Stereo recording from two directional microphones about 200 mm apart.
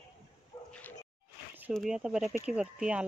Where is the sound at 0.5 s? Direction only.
25° left (ahead or behind).